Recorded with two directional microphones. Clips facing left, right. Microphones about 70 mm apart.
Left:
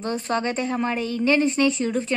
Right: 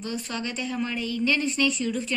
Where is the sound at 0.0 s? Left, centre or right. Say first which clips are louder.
Left 7 dB; left.